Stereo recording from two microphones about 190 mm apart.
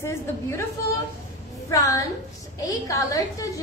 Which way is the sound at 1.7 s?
15° left (ahead or behind).